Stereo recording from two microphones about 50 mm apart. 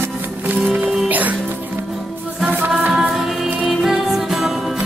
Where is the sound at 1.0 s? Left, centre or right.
Right.